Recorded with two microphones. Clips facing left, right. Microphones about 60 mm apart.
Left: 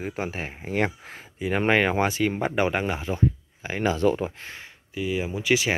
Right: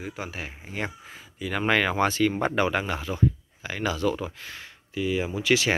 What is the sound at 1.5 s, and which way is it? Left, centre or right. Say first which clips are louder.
Speech: left 2 dB; left.